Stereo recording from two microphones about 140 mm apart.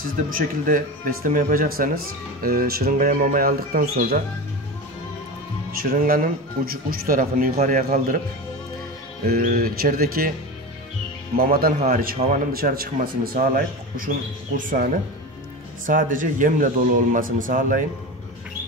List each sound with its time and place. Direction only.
0.0 s speech: 85° right
5.8 s a man's voice: 90° right
9.2 s speech: 90° right
11.3 s speech: 90° right
11.8 s a man's voice: 80° right
12.5 s speech: 90° right; by 14.9 s 75° right (ahead or behind)
15.9 s speech: 75° right (ahead or behind)